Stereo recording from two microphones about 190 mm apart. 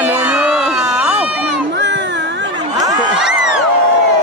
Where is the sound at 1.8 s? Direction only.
70° right (ahead or behind).